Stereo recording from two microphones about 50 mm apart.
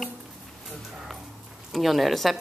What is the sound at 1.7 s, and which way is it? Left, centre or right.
Speech, centre.